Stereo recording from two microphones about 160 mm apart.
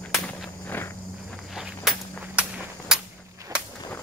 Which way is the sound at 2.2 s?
5° right (ahead or behind).